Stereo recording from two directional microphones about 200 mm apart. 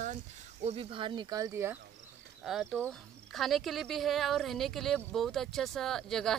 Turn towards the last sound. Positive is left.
turn(degrees=0)  # may be behind; listen again after turning